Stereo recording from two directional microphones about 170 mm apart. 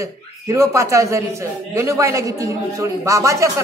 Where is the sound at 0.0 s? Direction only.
20° right (ahead or behind).